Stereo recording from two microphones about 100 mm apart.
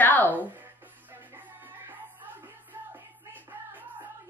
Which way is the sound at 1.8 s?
20° right (ahead or behind).